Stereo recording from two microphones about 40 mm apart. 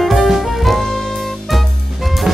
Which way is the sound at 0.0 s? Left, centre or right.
Centre.